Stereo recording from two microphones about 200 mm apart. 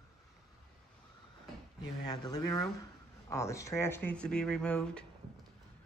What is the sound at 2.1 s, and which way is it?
Speech, 20° left (ahead or behind).